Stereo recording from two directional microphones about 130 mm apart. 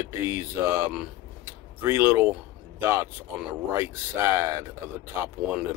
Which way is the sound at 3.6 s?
20° right (ahead or behind).